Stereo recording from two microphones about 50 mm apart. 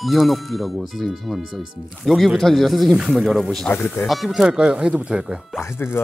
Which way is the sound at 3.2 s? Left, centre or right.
Centre.